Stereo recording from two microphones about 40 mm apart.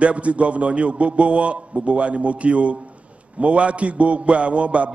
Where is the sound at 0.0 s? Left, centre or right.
Right.